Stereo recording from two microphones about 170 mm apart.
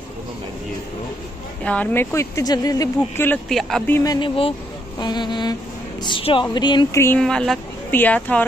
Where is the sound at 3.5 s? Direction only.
Centre (ahead or behind).